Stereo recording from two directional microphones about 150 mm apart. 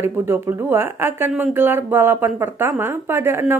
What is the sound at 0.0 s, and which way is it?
Speech, 15° right (ahead or behind).